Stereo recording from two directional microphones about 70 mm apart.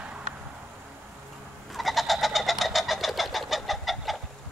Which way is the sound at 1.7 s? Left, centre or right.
Centre.